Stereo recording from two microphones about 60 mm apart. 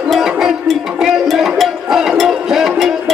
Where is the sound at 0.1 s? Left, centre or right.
Centre.